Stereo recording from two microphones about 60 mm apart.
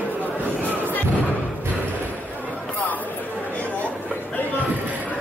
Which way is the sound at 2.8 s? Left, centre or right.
Left.